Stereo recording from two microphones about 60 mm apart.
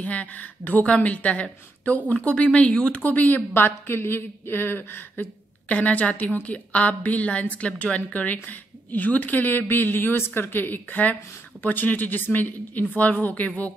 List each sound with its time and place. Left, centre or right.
0.0 s a woman's voice: left